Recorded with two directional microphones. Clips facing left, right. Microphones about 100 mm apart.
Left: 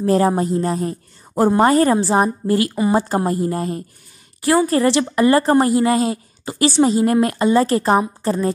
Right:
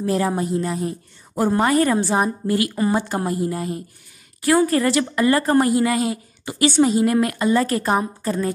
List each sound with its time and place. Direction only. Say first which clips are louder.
0.0 s a woman's voice: left 5 dB; 35° left (ahead or behind)
4.6 s a woman's voice: left 3 dB; 25° left (ahead or behind)